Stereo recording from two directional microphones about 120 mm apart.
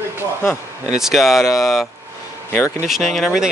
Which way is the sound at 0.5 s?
5° right (ahead or behind).